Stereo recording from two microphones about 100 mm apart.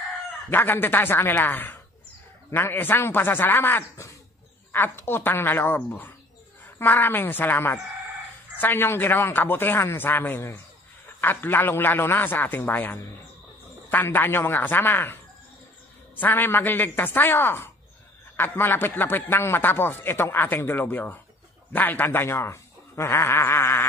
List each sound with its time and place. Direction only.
0.5 s a man's voice: 20° left (ahead or behind)
16.2 s a man's voice: 20° left (ahead or behind)